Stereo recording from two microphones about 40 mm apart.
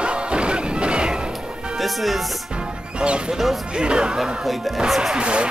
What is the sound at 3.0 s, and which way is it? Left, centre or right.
Speech, right.